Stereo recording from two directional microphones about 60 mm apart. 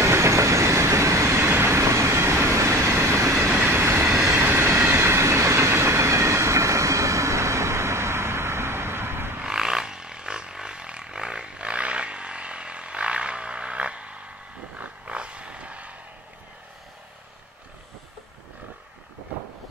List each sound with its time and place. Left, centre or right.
0.0 s train: right
4.4 s train: right
9.4 s a sound: centre